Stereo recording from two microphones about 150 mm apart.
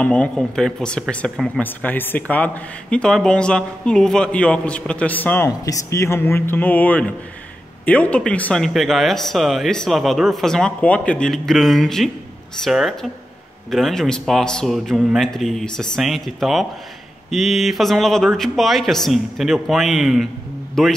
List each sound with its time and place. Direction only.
0.0 s speech: 5° left (ahead or behind)